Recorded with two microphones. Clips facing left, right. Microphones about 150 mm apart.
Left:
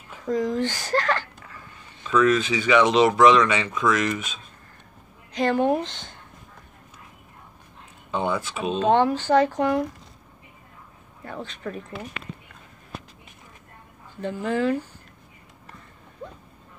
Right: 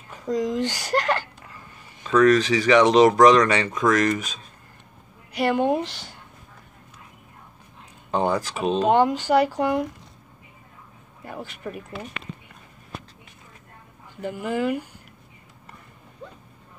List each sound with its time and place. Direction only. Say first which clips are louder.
0.3 s speech: even; 15° right (ahead or behind)
2.0 s speech: right 3 dB; 40° right (ahead or behind)
5.3 s speech: even; 15° right (ahead or behind)
8.1 s speech: right 3 dB; 40° right (ahead or behind)
8.8 s speech: left 1 dB; 15° right (ahead or behind)
11.2 s speech: left 1 dB; 10° right (ahead or behind)
14.2 s speech: left 1 dB; 10° right (ahead or behind)